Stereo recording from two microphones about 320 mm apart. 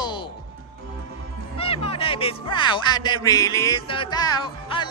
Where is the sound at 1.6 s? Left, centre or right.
Centre.